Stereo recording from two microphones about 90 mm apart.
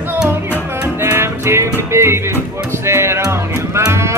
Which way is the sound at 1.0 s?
25° right (ahead or behind).